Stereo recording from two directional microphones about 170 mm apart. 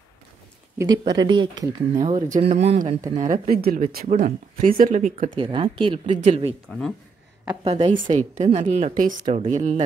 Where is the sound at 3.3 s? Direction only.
55° right (ahead or behind).